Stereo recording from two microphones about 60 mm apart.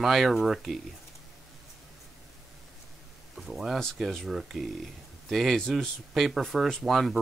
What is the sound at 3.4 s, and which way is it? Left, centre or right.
Speech, centre.